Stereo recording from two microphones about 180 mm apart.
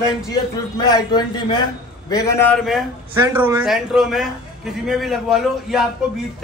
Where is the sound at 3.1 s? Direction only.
10° right (ahead or behind).